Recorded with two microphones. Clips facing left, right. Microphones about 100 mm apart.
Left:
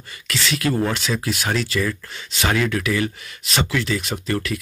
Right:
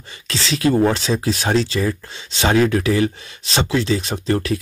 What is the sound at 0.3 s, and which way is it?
Speech, 30° right (ahead or behind).